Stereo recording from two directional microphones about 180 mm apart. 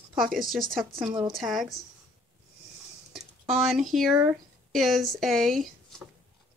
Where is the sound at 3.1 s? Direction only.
Centre (ahead or behind).